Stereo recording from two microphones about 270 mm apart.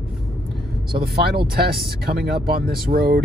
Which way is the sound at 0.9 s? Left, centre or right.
Right.